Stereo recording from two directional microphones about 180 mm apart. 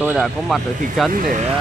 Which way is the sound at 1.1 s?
45° right (ahead or behind).